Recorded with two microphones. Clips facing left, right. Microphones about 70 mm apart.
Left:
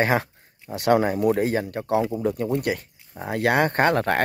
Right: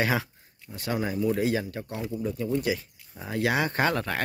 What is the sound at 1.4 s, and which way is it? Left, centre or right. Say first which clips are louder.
Speech: left 3 dB; left.